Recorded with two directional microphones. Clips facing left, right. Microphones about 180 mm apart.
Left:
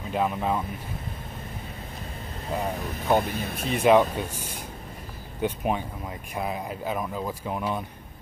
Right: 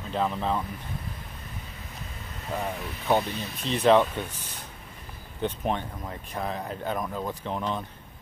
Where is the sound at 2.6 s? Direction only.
40° left (ahead or behind).